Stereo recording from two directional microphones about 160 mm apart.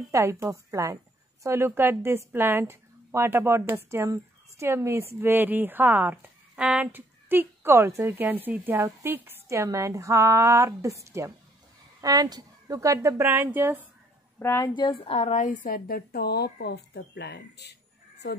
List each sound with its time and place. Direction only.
0.1 s a woman's voice: 20° right (ahead or behind)
14.4 s speech: 15° left (ahead or behind)
14.7 s a woman's voice: 30° left (ahead or behind)
15.1 s a woman's voice: 50° left (ahead or behind); by 17.7 s 90° left